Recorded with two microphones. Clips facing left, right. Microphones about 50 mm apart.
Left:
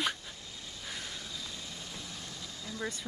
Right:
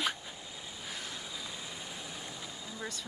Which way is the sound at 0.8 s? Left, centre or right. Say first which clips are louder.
Left 1 dB; centre.